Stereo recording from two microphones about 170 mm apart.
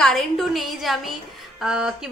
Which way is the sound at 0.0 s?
Centre (ahead or behind).